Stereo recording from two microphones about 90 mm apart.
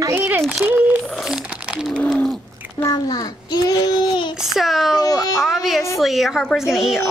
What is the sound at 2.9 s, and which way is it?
A child's voice, 45° left (ahead or behind).